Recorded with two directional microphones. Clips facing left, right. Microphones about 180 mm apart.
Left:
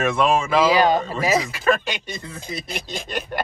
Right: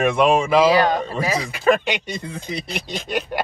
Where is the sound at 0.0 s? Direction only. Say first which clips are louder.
Right 3 dB; 10° right (ahead or behind).